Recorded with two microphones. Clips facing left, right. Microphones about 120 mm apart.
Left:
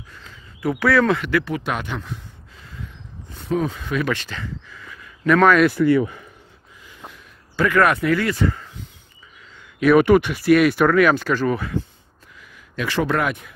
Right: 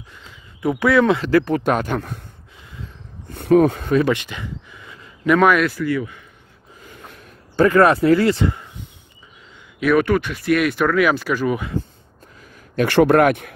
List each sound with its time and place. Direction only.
0.1 s a sound: 15° right (ahead or behind)
1.2 s speech: 40° right (ahead or behind)
3.3 s speech: 60° right (ahead or behind)
4.1 s a sound: 15° right (ahead or behind)
5.2 s speech: 15° right (ahead or behind)
5.8 s speech: 35° left (ahead or behind)
6.9 s a sound: 50° right (ahead or behind)
7.6 s speech: 35° right (ahead or behind)
9.9 s speech: 15° left (ahead or behind); by 11.7 s 15° right (ahead or behind)
12.8 s speech: 60° right (ahead or behind)